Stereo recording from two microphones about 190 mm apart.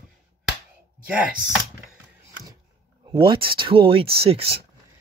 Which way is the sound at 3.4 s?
25° right (ahead or behind).